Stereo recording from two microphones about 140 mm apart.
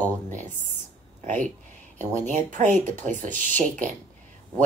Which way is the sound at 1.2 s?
65° right (ahead or behind).